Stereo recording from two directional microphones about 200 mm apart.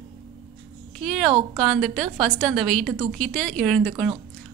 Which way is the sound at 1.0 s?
Centre (ahead or behind).